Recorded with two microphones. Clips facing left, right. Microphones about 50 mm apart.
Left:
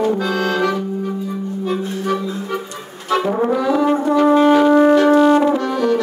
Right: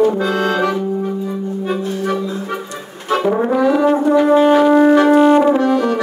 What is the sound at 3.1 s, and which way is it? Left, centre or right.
Brass instrument, right.